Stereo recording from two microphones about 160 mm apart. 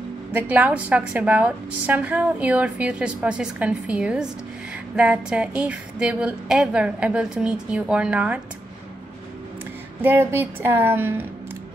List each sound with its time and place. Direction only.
0.3 s a woman's voice: 10° right (ahead or behind)
10.0 s a woman's voice: 15° right (ahead or behind)